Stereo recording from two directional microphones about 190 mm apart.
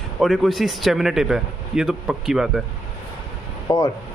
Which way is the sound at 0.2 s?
Centre (ahead or behind).